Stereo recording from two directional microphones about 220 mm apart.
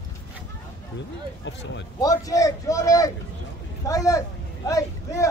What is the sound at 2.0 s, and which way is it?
A man's voice, 15° left (ahead or behind).